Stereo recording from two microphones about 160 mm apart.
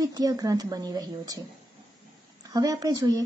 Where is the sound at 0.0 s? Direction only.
25° right (ahead or behind).